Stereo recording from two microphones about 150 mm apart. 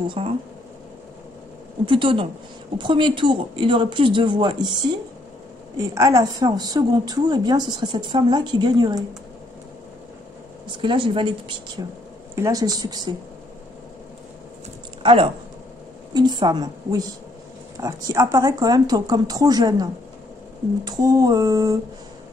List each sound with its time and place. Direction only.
0.1 s speech: 45° right (ahead or behind)
1.9 s a woman's voice: 35° right (ahead or behind)
10.8 s a woman's voice: 35° right (ahead or behind)
15.0 s a woman's voice: 35° right (ahead or behind)